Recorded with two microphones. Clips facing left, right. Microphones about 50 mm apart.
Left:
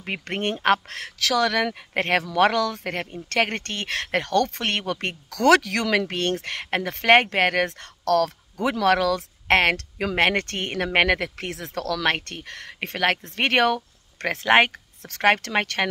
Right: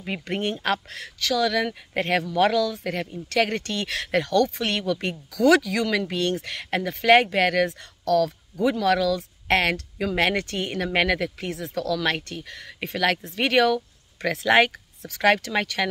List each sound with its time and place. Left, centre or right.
0.0 s speech: left
5.3 s speech: left
8.0 s speech: left